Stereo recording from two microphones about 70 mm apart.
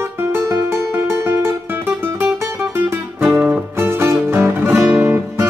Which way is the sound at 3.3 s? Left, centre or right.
Right.